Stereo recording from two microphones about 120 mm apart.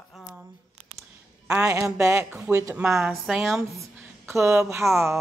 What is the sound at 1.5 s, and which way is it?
A woman's voice, 25° right (ahead or behind).